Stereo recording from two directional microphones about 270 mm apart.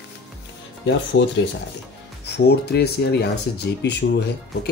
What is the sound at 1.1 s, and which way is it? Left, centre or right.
Speech, left.